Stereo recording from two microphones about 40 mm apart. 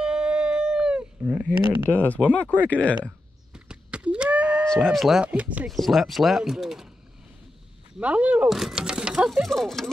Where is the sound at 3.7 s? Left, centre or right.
Right.